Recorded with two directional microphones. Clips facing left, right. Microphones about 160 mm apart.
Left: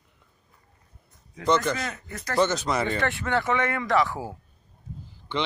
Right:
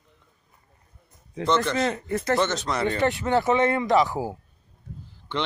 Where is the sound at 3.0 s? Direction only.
20° right (ahead or behind).